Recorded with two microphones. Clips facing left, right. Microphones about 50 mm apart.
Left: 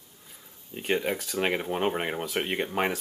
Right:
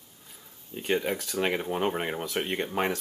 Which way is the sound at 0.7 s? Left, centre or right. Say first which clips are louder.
Even; centre.